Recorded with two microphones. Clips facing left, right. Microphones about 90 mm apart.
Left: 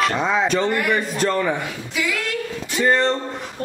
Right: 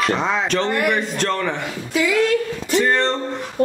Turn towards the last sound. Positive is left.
turn(degrees=5)  # may be behind; listen again after turning